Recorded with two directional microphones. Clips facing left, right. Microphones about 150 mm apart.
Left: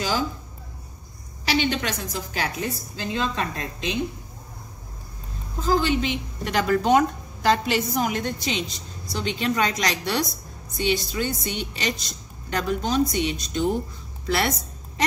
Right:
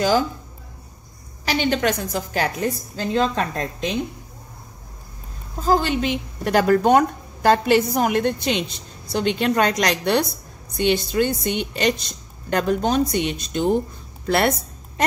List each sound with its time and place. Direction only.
1.4 s a woman's voice: 45° right (ahead or behind)
5.6 s a woman's voice: 45° right (ahead or behind)